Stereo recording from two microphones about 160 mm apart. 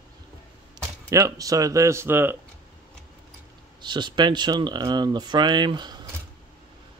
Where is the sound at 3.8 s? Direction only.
30° right (ahead or behind).